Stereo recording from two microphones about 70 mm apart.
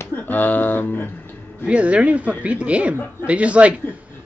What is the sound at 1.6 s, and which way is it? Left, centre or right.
A man's voice, centre.